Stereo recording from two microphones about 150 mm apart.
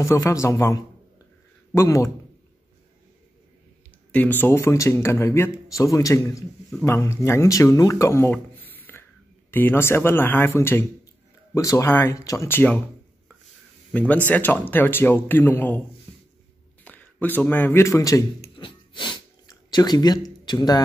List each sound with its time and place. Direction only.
0.0 s speech: 20° left (ahead or behind)
4.1 s a man's voice: 10° left (ahead or behind)
13.9 s a man's voice: 10° left (ahead or behind)
16.8 s a man's voice: 10° left (ahead or behind)
18.6 s a sound: 30° left (ahead or behind)